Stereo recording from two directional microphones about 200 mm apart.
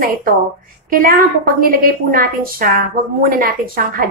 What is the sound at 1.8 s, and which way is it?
A woman's voice, 45° right (ahead or behind).